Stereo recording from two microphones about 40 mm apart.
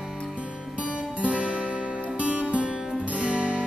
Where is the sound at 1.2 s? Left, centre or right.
Right.